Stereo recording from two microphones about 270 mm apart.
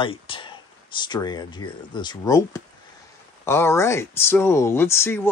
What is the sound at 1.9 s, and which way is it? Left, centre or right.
Speech, centre.